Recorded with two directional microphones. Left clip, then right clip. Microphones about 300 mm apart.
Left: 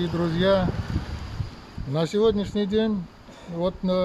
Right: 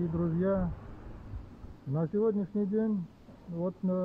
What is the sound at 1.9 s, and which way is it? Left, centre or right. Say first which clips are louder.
Speech: left 9 dB; centre.